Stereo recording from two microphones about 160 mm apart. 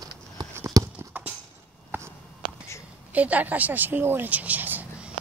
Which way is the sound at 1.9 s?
10° right (ahead or behind).